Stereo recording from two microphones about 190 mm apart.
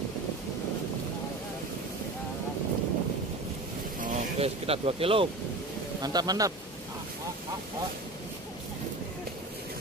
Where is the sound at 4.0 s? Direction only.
35° right (ahead or behind); by 6.5 s 20° right (ahead or behind).